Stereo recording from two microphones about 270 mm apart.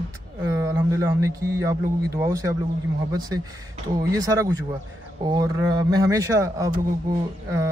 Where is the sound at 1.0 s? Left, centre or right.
Centre.